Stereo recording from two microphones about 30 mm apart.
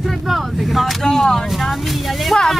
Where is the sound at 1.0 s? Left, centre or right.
Centre.